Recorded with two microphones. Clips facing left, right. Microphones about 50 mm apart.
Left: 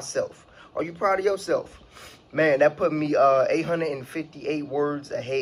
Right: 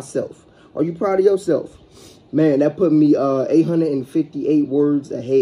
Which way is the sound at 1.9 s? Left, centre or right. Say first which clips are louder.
Right 6 dB; left.